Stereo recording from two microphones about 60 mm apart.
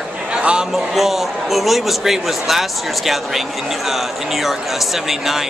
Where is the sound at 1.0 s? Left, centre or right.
Centre.